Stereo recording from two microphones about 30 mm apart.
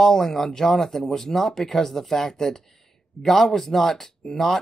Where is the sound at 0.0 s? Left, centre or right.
Centre.